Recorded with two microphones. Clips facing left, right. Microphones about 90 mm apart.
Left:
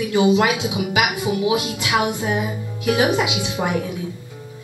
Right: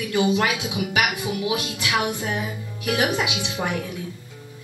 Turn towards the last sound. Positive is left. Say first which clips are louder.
# left 4 dB
turn(degrees=15)  # may be behind; listen again after turning